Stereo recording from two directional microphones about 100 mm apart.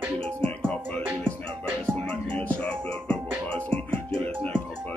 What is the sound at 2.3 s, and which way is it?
Music, 15° left (ahead or behind).